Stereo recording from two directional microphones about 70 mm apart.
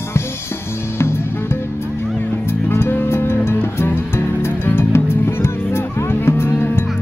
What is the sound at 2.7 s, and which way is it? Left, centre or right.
Music, left.